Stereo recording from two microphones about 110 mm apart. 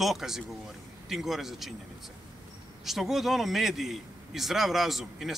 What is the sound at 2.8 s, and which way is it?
A man's voice, 5° right (ahead or behind).